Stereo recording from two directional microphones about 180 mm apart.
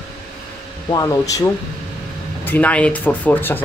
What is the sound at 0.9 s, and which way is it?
Speech, 20° left (ahead or behind).